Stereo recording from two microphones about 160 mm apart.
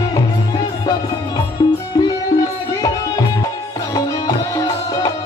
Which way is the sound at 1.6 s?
25° left (ahead or behind).